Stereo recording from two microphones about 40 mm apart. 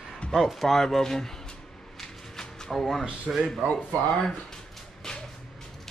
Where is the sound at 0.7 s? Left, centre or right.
Centre.